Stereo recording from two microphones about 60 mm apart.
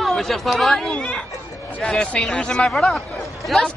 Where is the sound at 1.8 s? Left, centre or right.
Centre.